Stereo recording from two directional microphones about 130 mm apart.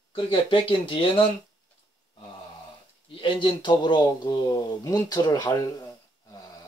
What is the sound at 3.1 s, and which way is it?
A man's voice, 40° left (ahead or behind).